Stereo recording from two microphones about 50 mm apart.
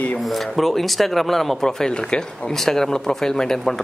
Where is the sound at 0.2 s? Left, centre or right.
Centre.